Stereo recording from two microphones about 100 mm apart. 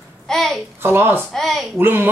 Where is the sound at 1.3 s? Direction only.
5° left (ahead or behind).